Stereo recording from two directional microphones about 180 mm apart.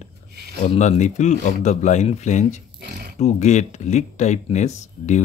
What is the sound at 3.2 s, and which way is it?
Speech, 40° left (ahead or behind).